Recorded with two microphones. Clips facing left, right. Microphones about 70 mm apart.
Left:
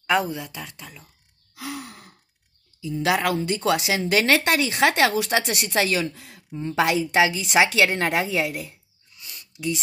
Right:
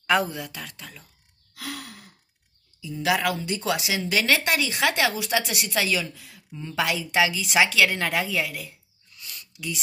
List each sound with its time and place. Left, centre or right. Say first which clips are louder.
0.0 s speech: left 1 dB; centre
1.5 s sigh: left 2 dB; centre
1.9 s sigh: left 1 dB; left
2.8 s speech: left 2 dB; left
9.1 s a sound: right 1 dB; centre